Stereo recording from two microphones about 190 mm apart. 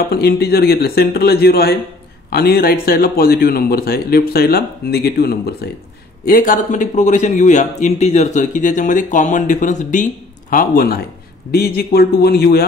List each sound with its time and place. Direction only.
0.1 s a man's voice: 55° left (ahead or behind)